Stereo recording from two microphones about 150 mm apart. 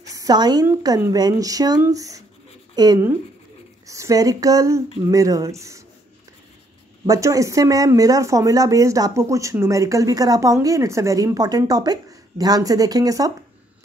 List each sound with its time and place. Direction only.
0.0 s a sound: 25° right (ahead or behind)
0.7 s speech: 20° right (ahead or behind)
7.1 s speech: 20° right (ahead or behind)